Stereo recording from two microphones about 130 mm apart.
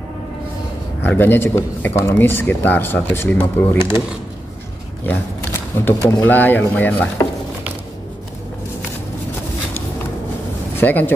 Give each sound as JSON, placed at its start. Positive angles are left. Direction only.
{"t": 1.0, "sound": "speech", "side_deg": 15}
{"t": 5.0, "sound": "speech", "side_deg": 15}
{"t": 10.8, "sound": "speech", "side_deg": 15}